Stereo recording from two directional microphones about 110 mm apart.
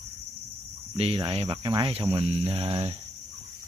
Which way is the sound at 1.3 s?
50° right (ahead or behind).